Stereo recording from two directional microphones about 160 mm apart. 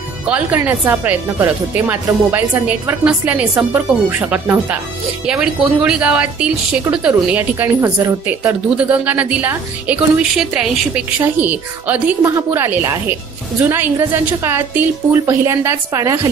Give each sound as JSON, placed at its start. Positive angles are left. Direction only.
{"t": 0.3, "sound": "a woman's voice", "side_deg": -10}